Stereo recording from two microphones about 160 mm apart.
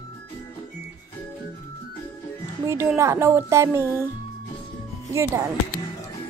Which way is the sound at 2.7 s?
15° right (ahead or behind).